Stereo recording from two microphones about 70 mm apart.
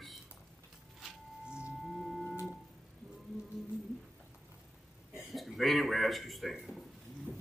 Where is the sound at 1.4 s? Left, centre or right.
Centre.